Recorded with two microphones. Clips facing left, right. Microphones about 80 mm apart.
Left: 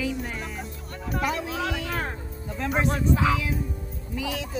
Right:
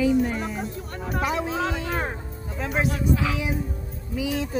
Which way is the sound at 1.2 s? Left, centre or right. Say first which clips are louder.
Right 3 dB; centre.